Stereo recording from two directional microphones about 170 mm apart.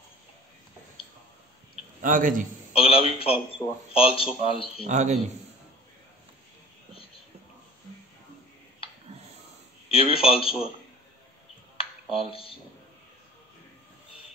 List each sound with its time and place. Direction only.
2.0 s a man's voice: 50° right (ahead or behind)
2.7 s a man's voice: 35° left (ahead or behind)
3.6 s speech: 20° left (ahead or behind)
3.9 s a man's voice: 35° left (ahead or behind)
4.8 s a man's voice: 45° right (ahead or behind)
9.8 s a man's voice: 35° left (ahead or behind)
11.7 s a sound: 35° left (ahead or behind)